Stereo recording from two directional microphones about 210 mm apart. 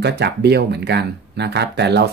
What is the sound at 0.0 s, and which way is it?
Speech, 50° right (ahead or behind).